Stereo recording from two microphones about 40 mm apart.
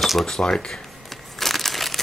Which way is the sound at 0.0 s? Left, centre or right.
Centre.